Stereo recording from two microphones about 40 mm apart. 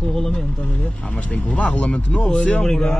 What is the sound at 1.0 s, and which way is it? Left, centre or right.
Speech, left.